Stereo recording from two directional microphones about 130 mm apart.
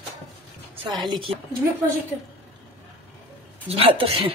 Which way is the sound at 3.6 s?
45° right (ahead or behind).